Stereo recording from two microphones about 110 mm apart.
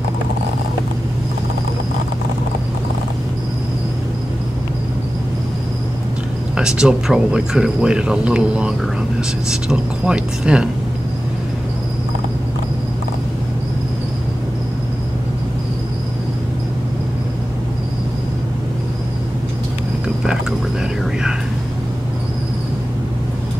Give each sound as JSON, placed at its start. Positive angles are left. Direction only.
{"t": 6.5, "sound": "speech", "side_deg": -5}
{"t": 21.0, "sound": "whispering", "side_deg": -5}